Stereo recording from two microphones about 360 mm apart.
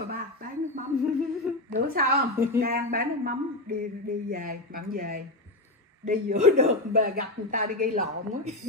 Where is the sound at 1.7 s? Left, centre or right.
Right.